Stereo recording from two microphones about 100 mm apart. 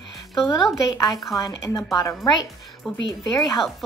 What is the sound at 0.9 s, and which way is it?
Speech, 35° left (ahead or behind).